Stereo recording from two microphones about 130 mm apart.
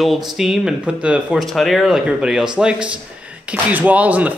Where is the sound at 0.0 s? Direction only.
Centre (ahead or behind).